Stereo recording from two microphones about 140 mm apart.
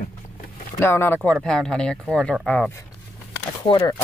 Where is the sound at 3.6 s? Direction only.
30° left (ahead or behind).